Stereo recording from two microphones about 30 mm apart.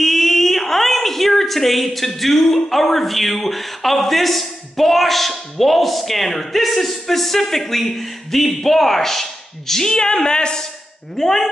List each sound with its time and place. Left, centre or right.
0.0 s a woman's voice: centre
9.9 s speech: left
11.1 s speech: centre